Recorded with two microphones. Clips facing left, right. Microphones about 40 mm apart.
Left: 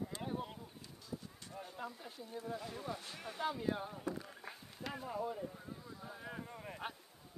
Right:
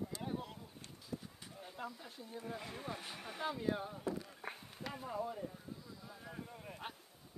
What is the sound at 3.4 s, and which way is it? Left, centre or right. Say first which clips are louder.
Speech: even; centre.